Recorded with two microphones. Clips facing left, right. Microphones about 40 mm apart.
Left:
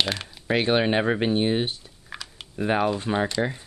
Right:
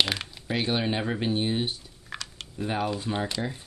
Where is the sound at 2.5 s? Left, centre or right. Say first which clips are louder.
Left 6 dB; left.